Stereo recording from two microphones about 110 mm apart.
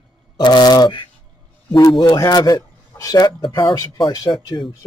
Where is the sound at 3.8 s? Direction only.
35° left (ahead or behind).